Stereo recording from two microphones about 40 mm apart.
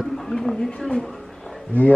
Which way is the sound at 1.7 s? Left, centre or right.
Left.